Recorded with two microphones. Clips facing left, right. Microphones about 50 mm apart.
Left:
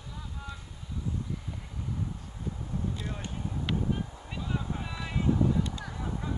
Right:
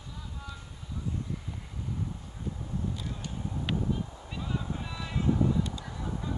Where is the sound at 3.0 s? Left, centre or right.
Left.